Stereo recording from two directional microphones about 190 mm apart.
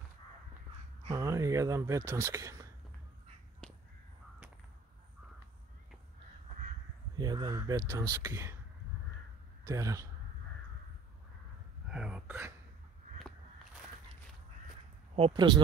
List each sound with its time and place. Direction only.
1.0 s speech: 15° right (ahead or behind)
7.2 s speech: 20° right (ahead or behind)
9.7 s speech: 15° right (ahead or behind)
11.9 s speech: 5° right (ahead or behind)
15.1 s speech: 25° right (ahead or behind)